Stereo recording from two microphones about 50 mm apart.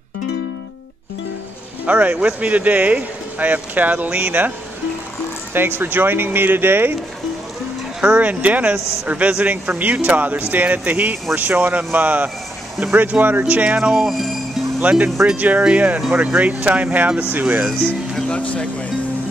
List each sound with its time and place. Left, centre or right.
1.9 s speech: right
5.5 s speech: right
8.0 s speech: right
13.7 s speech: centre
14.8 s speech: right
18.3 s speech: left